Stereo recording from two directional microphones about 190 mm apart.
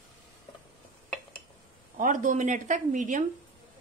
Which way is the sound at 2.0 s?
45° right (ahead or behind).